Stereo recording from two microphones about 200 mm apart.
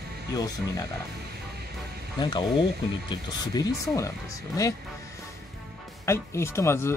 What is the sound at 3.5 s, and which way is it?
Speech, 15° left (ahead or behind).